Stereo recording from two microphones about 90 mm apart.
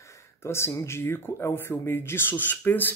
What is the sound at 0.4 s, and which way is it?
Speech, 30° left (ahead or behind).